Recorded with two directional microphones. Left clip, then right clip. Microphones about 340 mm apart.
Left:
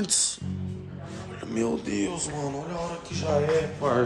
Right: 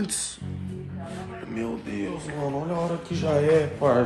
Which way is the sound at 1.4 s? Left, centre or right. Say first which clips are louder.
Left 5 dB; centre.